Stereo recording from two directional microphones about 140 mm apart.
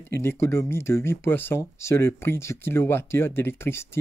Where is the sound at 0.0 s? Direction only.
15° left (ahead or behind).